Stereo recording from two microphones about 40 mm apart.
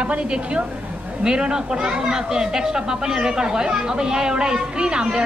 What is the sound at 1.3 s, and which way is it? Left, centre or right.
Speech, centre.